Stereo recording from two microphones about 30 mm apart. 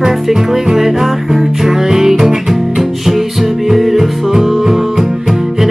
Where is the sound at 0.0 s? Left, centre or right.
Centre.